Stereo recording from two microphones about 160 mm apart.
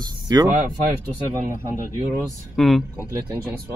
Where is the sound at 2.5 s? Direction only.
Centre (ahead or behind).